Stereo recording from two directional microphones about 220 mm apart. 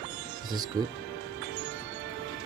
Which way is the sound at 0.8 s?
15° right (ahead or behind).